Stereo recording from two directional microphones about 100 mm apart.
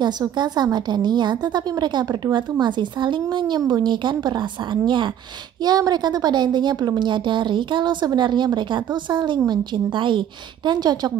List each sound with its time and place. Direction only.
0.2 s speech: 40° right (ahead or behind)